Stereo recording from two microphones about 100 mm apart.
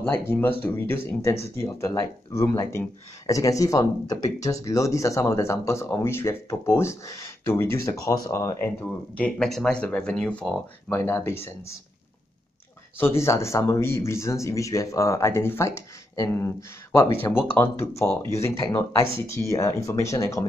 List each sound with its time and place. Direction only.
0.3 s speech: 20° left (ahead or behind)
8.8 s speech: 10° left (ahead or behind)
10.9 s speech: 25° left (ahead or behind)
13.0 s speech: 25° left (ahead or behind)